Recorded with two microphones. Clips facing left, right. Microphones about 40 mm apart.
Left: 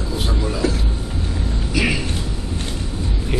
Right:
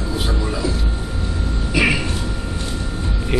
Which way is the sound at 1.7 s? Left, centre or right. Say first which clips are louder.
Right 3 dB; centre.